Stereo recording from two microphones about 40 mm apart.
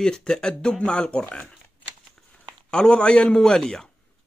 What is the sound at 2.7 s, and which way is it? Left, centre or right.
Speech, left.